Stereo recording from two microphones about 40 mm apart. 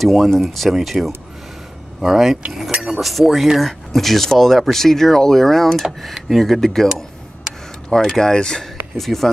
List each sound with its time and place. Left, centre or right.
0.0 s speech: centre
7.9 s speech: centre
8.9 s speech: centre